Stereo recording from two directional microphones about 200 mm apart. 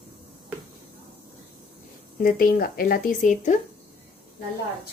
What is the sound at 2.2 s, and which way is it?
Speech, 45° left (ahead or behind).